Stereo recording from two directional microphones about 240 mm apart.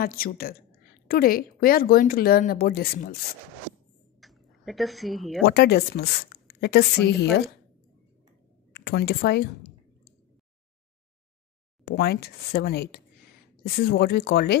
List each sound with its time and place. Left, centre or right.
0.0 s a woman's voice: left
4.2 s a sound: centre
5.4 s a woman's voice: left
8.8 s a woman's voice: left
11.8 s a woman's voice: left